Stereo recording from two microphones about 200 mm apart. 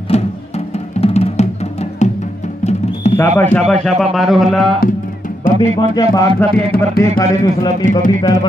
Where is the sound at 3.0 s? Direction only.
35° left (ahead or behind).